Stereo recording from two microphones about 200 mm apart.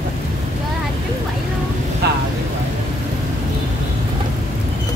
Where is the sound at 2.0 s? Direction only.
55° right (ahead or behind).